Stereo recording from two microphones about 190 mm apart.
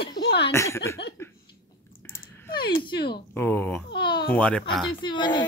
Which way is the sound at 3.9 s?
25° left (ahead or behind).